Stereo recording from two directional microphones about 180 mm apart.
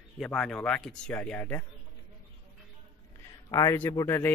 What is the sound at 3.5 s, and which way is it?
Speech, 15° left (ahead or behind).